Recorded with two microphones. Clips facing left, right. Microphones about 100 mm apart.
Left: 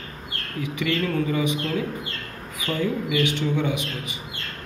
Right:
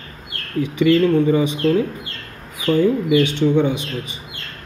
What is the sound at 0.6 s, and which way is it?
Speech, 30° right (ahead or behind).